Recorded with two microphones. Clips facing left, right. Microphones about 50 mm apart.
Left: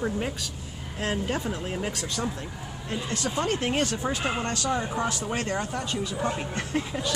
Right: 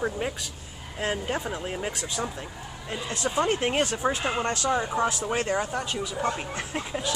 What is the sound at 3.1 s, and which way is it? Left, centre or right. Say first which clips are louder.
Speech: right 3 dB; right.